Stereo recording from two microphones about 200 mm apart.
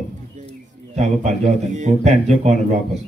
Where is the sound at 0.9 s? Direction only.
35° right (ahead or behind).